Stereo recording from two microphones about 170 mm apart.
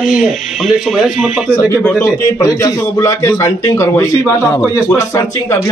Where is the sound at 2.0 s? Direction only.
20° left (ahead or behind).